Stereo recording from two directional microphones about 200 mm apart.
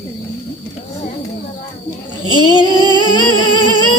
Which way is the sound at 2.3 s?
25° left (ahead or behind).